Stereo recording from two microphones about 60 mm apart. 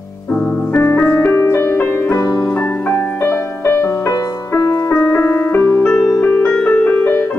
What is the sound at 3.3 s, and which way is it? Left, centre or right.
Music, left.